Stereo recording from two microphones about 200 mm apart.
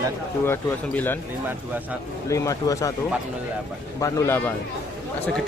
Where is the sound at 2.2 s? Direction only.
15° left (ahead or behind).